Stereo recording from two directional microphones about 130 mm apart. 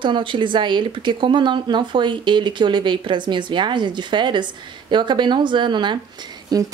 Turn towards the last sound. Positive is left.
turn(degrees=-30)  # may be behind; listen again after turning